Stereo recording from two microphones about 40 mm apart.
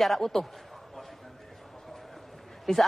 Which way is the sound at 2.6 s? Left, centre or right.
Centre.